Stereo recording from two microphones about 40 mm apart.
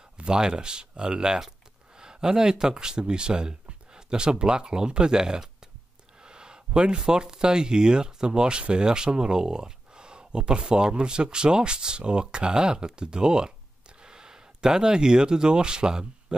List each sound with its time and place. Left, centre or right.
0.2 s speech: centre